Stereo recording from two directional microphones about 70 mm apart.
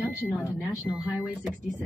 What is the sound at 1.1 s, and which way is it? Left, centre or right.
Speech, centre.